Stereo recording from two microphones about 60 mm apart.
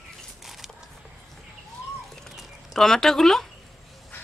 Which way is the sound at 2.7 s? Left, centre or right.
Centre.